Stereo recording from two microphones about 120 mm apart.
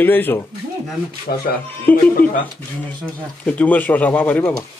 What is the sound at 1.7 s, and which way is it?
Speech, 15° left (ahead or behind).